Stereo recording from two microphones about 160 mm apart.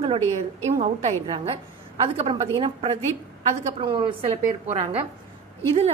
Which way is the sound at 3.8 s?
30° right (ahead or behind).